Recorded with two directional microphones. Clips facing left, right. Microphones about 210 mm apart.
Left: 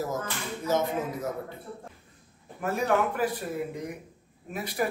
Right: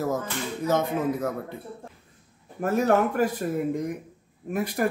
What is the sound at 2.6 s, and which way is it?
Speech, 45° right (ahead or behind).